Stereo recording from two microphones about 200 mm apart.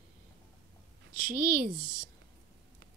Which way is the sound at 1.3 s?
50° right (ahead or behind).